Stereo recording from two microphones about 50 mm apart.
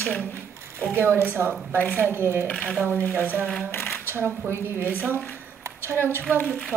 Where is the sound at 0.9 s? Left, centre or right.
Right.